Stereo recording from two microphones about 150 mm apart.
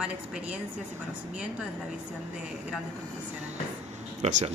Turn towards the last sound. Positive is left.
turn(degrees=-50)  # may be behind; listen again after turning